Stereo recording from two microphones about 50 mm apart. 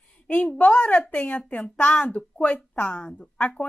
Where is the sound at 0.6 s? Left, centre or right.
Left.